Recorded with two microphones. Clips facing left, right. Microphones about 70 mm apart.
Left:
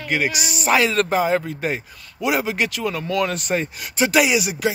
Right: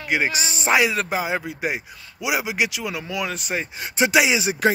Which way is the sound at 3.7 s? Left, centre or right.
Right.